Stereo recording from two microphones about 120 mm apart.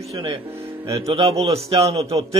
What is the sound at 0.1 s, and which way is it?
A man's voice, 50° right (ahead or behind).